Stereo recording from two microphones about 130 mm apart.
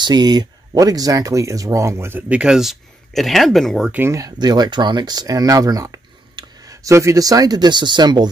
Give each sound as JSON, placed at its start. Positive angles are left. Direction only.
{"t": 0.0, "sound": "speech", "side_deg": -35}
{"t": 3.9, "sound": "speech", "side_deg": -20}